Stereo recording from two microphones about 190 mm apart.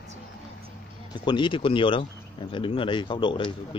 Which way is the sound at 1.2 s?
25° left (ahead or behind).